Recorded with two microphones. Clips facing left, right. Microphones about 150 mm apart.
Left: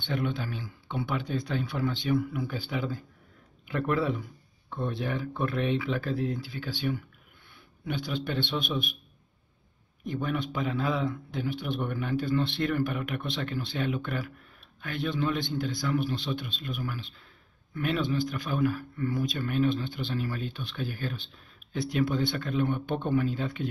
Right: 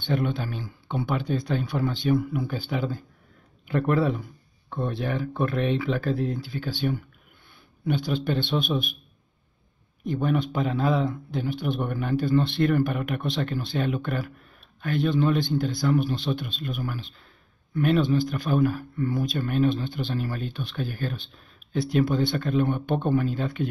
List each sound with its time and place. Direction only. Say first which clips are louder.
0.0 s speech: right 4 dB; 40° right (ahead or behind)
4.6 s speech: right 3 dB; 55° right (ahead or behind); by 8.5 s 40° right (ahead or behind)
10.0 s speech: right 6 dB; 35° right (ahead or behind)
21.7 s speech: right 4 dB; 35° right (ahead or behind); by 23.7 s 50° right (ahead or behind)